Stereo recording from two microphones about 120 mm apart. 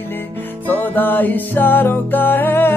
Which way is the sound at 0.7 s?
15° left (ahead or behind).